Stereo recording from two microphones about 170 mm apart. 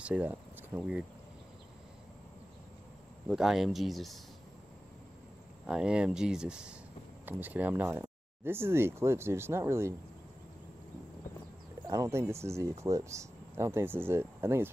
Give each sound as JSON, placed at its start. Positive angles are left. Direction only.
{"t": 0.0, "sound": "speech", "side_deg": -10}
{"t": 3.3, "sound": "speech", "side_deg": 0}
{"t": 5.7, "sound": "speech", "side_deg": -5}
{"t": 11.9, "sound": "speech", "side_deg": -20}